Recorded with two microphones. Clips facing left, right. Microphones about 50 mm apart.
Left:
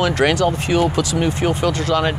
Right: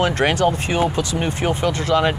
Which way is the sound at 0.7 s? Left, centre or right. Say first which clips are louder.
Left 2 dB; right.